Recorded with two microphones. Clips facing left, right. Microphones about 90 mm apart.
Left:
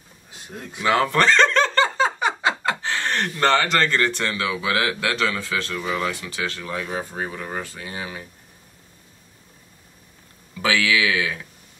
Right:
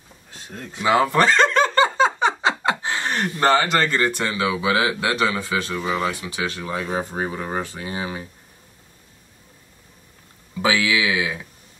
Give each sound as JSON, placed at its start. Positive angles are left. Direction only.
{"t": 0.3, "sound": "a sound", "side_deg": 10}
{"t": 0.8, "sound": "speech", "side_deg": -5}
{"t": 10.6, "sound": "speech", "side_deg": -15}